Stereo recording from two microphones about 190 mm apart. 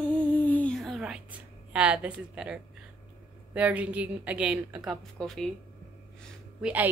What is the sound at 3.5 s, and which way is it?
A woman's voice, 5° right (ahead or behind).